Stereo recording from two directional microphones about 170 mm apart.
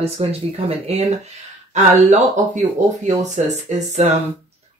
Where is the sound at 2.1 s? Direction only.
45° right (ahead or behind).